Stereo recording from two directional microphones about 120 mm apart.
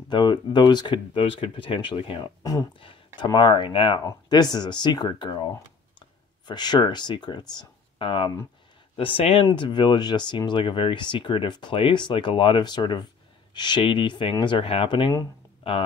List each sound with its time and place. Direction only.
0.1 s speech: 40° left (ahead or behind)
2.8 s a sound: 45° left (ahead or behind)
3.3 s speech: 40° left (ahead or behind)
4.0 s speech: 30° left (ahead or behind); by 9.5 s 55° left (ahead or behind)
9.5 s speech: 40° left (ahead or behind)